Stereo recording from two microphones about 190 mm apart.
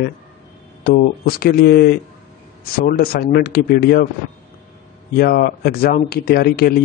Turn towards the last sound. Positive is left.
turn(degrees=55)  # may be behind; listen again after turning